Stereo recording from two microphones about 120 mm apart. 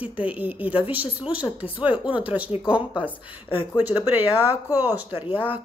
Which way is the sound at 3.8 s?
15° right (ahead or behind).